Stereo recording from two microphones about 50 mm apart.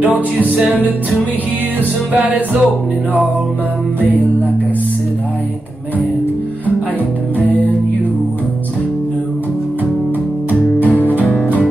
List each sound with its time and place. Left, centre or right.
0.0 s music: right
2.1 s music: right
7.3 s music: left
10.9 s music: right